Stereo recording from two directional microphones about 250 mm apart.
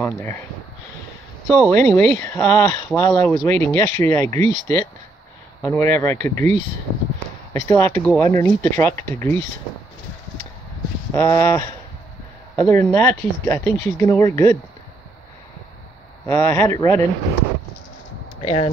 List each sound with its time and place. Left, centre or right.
0.0 s speech: centre
1.5 s speech: centre
7.5 s speech: centre
11.1 s speech: centre
16.3 s speech: centre
18.4 s speech: left